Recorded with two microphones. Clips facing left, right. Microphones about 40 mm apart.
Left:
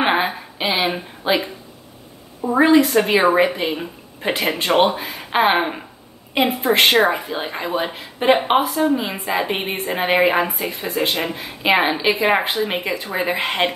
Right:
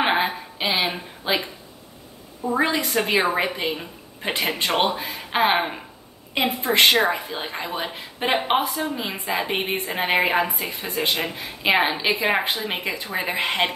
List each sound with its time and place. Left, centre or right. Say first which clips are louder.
0.0 s a sound: left 3 dB; centre
0.9 s speech: left 5 dB; centre
2.4 s a woman's voice: left 8 dB; centre
4.6 s a woman's voice: left 7 dB; centre